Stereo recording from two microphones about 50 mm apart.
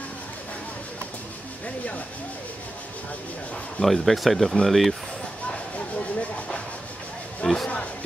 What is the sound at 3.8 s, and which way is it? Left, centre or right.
Speech, centre.